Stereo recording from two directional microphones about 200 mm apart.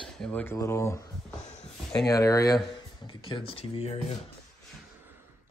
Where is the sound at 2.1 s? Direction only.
15° left (ahead or behind).